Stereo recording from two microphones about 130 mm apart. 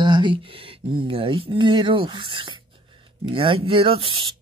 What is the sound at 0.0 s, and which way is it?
Speech, 35° right (ahead or behind).